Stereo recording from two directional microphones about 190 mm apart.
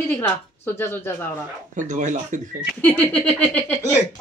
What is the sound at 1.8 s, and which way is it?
Speech, 40° right (ahead or behind).